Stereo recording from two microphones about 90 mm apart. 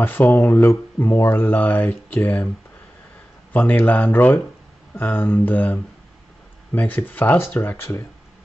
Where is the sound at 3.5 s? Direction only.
20° left (ahead or behind).